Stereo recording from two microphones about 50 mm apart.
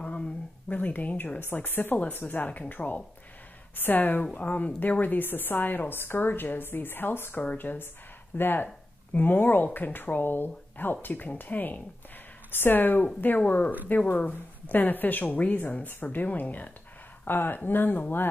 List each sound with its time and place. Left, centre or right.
0.0 s speech: left
17.3 s speech: left